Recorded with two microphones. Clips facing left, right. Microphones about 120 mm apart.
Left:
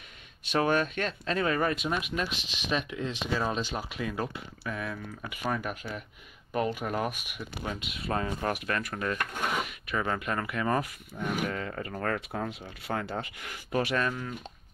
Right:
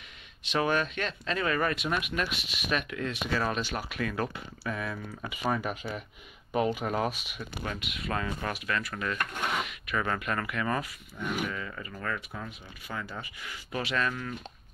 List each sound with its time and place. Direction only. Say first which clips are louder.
0.5 s speech: left 2 dB; 40° left (ahead or behind); by 4.3 s 15° left (ahead or behind)
4.6 s speech: right 1 dB; centre (ahead or behind)
6.8 s speech: right 1 dB; centre (ahead or behind)
7.1 s speech: right 1 dB; 15° left (ahead or behind)
7.9 s speech: left 3 dB; 35° left (ahead or behind)
9.9 s speech: even; 25° left (ahead or behind); by 13.6 s 60° left (ahead or behind)
13.7 s speech: left 3 dB; 40° left (ahead or behind)